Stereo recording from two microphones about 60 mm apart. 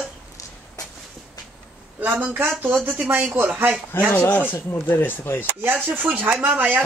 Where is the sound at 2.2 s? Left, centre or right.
Right.